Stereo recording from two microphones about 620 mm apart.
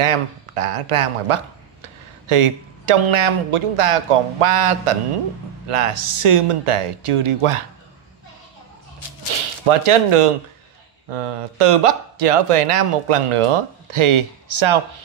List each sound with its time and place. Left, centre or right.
0.0 s a man's voice: right
9.7 s speech: right